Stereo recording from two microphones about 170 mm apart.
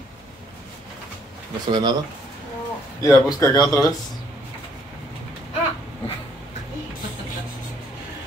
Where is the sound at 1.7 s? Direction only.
25° right (ahead or behind).